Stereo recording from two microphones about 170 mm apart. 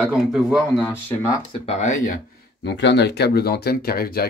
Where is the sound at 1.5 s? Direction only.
35° left (ahead or behind).